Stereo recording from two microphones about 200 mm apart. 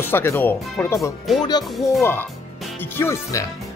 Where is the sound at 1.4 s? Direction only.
20° left (ahead or behind).